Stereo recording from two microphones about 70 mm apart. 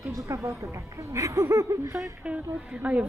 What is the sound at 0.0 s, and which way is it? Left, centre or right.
Speech, right.